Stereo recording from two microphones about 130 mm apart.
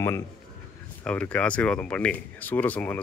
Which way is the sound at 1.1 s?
10° left (ahead or behind).